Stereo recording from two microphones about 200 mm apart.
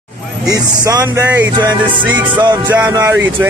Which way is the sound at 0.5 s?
15° right (ahead or behind).